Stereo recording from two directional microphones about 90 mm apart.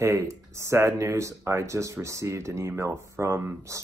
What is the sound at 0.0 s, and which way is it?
Speech, 30° right (ahead or behind).